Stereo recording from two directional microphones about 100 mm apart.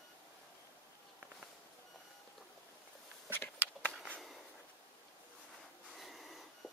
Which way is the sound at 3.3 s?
15° left (ahead or behind).